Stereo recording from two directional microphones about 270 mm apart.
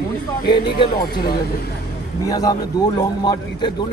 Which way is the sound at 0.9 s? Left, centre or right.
Left.